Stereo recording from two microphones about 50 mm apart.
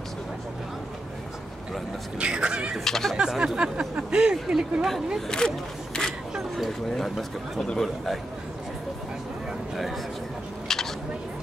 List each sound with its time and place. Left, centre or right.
2.1 s speech: right
2.8 s speech: centre
3.2 s speech: centre
4.8 s speech: centre
5.4 s speech: centre
6.3 s a sound: centre
6.9 s speech: centre
10.7 s a sound: centre